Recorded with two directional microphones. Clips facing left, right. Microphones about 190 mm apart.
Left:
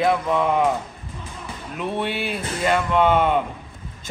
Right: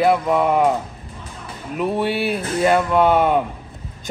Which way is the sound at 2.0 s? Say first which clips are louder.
Right 5 dB; 40° right (ahead or behind).